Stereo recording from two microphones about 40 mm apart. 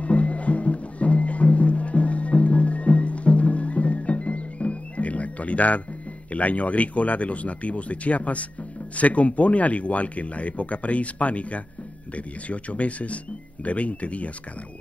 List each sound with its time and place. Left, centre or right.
0.0 s music: left
6.3 s speech: left